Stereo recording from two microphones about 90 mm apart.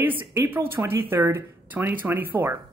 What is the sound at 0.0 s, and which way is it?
A woman's voice, 25° right (ahead or behind).